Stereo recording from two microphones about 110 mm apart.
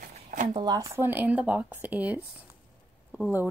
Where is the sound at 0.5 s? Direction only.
35° right (ahead or behind).